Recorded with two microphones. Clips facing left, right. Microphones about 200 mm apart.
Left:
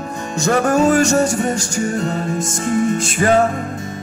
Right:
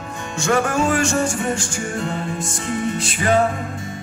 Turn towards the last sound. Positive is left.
turn(degrees=45)  # may be behind; listen again after turning